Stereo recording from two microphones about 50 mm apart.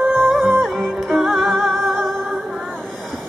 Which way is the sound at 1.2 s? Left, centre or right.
Centre.